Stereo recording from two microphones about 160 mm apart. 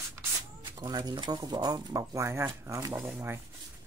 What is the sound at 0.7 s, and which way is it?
Speech, 25° right (ahead or behind).